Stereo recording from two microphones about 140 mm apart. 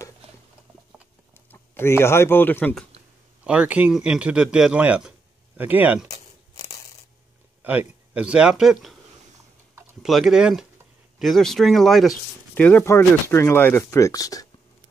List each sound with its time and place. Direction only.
1.5 s a man's voice: 15° left (ahead or behind)
3.4 s a man's voice: 10° right (ahead or behind)
6.1 s tearing: 50° left (ahead or behind)
7.6 s a man's voice: 15° right (ahead or behind)
10.0 s speech: centre (ahead or behind)
12.5 s speech: 15° left (ahead or behind)